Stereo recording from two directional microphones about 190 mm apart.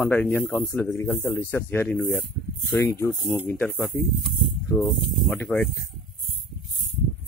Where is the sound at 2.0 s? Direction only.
Centre (ahead or behind).